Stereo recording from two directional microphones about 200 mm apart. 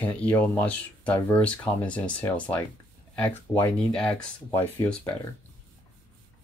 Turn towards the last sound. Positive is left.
turn(degrees=10)  # may be behind; listen again after turning